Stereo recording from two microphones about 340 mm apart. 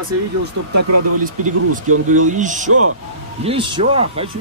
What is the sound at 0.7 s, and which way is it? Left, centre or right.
Speech, right.